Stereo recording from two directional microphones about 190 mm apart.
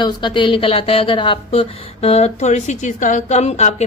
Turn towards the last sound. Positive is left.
turn(degrees=35)  # may be behind; listen again after turning